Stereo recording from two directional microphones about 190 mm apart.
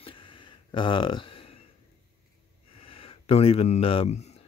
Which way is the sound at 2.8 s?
30° left (ahead or behind).